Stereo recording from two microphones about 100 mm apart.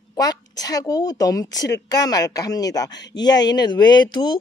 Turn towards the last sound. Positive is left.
turn(degrees=50)  # may be behind; listen again after turning